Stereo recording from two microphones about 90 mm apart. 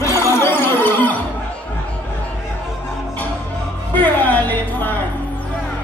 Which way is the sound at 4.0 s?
20° left (ahead or behind).